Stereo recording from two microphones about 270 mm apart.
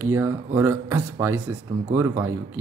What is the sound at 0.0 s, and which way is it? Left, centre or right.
Speech, centre.